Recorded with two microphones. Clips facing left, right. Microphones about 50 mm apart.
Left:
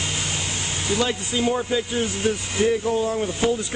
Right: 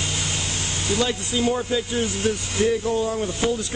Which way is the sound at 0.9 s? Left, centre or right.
Centre.